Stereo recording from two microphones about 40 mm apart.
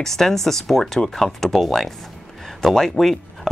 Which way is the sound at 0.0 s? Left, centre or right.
Centre.